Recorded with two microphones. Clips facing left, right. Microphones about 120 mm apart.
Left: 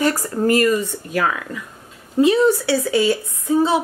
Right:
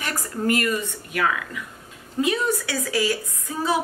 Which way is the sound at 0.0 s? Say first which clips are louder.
Left 8 dB; 35° left (ahead or behind).